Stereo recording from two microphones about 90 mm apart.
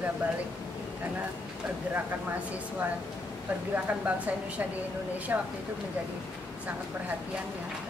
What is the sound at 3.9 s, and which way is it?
A woman's voice, 15° right (ahead or behind).